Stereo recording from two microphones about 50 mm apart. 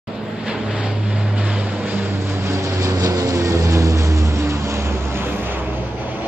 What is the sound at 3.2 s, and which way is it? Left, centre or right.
Vehicle, right.